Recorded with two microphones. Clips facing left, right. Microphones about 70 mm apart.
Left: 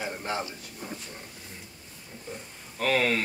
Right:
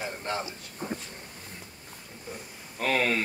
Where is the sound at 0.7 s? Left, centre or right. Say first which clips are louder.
Right 6 dB; right.